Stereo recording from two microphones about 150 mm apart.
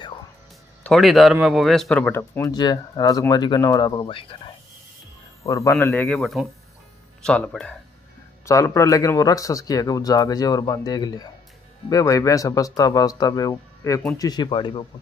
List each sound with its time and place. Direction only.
0.8 s speech: centre (ahead or behind)
2.5 s speech: 25° left (ahead or behind)
5.4 s speech: 20° left (ahead or behind)
6.0 s speech: centre (ahead or behind)
8.5 s speech: 20° left (ahead or behind)